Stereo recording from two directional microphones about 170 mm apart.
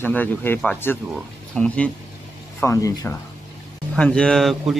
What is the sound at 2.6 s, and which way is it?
Speech, 20° left (ahead or behind).